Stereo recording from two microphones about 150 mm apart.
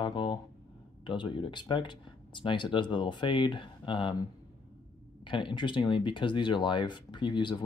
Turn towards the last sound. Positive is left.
turn(degrees=30)  # may be behind; listen again after turning